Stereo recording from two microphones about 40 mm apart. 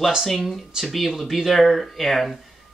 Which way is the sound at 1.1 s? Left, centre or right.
Centre.